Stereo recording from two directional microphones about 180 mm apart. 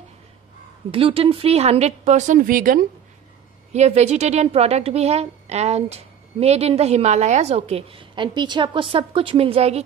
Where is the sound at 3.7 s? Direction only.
35° right (ahead or behind).